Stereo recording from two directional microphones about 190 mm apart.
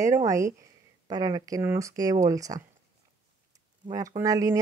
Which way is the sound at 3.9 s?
15° right (ahead or behind).